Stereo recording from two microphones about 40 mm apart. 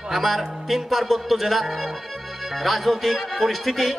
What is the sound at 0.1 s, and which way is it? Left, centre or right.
Speech, centre.